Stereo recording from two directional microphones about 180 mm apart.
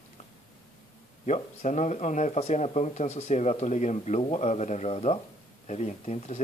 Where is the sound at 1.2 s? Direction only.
40° left (ahead or behind).